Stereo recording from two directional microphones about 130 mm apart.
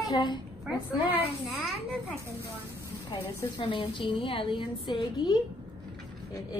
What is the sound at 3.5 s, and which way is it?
A woman's voice, 40° left (ahead or behind).